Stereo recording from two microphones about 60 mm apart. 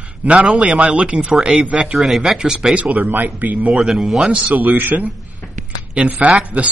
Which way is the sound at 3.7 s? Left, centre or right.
Centre.